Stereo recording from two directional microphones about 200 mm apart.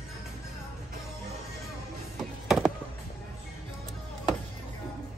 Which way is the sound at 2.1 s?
Centre (ahead or behind).